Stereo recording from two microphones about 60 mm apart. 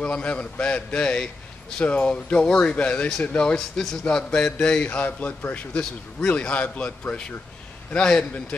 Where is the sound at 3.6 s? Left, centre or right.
Centre.